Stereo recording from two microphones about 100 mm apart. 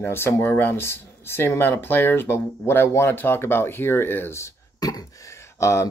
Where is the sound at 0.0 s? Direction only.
25° left (ahead or behind).